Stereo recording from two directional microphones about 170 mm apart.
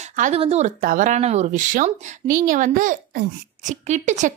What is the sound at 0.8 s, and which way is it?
A woman's voice, 55° right (ahead or behind).